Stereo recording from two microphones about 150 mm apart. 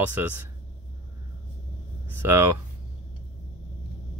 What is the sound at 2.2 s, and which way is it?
Speech, 15° right (ahead or behind).